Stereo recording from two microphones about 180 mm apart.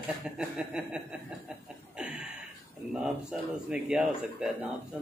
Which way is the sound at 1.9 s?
5° right (ahead or behind).